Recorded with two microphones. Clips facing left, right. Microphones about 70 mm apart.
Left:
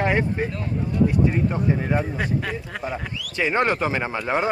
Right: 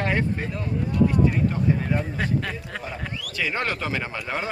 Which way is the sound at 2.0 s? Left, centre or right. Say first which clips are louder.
Left 2 dB; centre.